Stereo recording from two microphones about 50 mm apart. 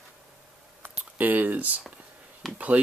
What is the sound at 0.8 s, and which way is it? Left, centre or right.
Speech, right.